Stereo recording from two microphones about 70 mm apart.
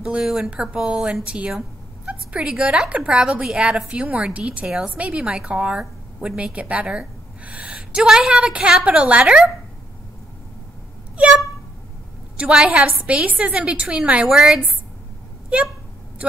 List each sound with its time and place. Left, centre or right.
0.2 s a woman's voice: centre
12.4 s a woman's voice: centre
14.3 s a woman's voice: centre
15.5 s a sound: centre